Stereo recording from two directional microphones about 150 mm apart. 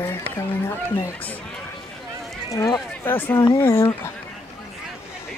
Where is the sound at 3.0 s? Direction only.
15° left (ahead or behind).